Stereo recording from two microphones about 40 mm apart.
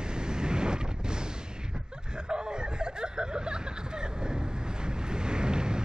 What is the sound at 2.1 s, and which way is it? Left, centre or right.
Chuckle, right.